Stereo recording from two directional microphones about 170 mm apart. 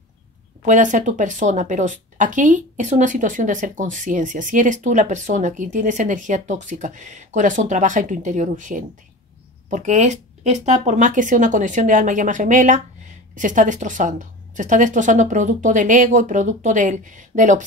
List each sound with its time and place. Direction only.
0.6 s speech: 50° right (ahead or behind)